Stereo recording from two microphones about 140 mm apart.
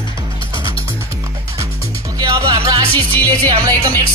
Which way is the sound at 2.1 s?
25° right (ahead or behind).